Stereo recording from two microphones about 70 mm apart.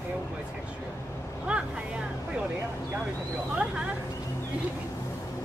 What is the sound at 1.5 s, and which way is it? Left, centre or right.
Speech, centre.